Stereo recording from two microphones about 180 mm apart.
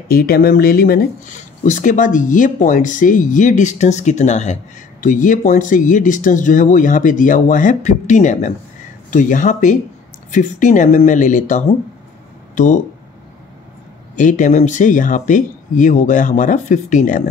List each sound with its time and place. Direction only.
0.1 s speech: 55° left (ahead or behind)
14.1 s speech: 45° left (ahead or behind)